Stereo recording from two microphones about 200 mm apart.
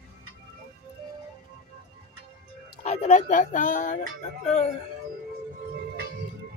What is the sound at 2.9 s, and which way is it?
Speech, 35° left (ahead or behind).